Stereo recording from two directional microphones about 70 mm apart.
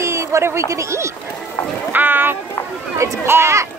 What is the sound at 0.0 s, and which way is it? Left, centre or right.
Speech, right.